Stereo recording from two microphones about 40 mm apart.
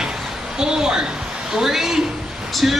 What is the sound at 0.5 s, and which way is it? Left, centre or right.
Speech, centre.